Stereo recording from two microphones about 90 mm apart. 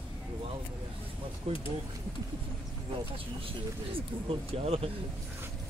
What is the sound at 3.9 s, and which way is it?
Speech, 90° right.